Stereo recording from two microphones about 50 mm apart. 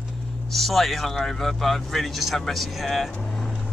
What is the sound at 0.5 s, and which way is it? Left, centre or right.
Speech, centre.